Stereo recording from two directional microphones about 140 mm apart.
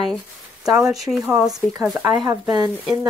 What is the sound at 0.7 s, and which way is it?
Speech, 5° right (ahead or behind).